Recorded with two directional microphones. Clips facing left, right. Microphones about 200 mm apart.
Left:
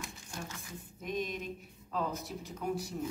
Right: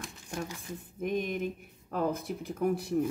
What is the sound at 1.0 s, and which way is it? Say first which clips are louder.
Speech: right 6 dB; 55° right (ahead or behind).